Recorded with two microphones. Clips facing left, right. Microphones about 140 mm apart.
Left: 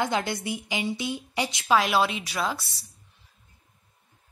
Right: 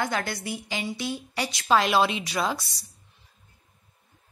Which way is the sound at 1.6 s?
5° left (ahead or behind).